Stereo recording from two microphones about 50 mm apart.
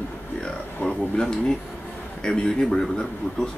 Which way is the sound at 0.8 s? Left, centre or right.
Centre.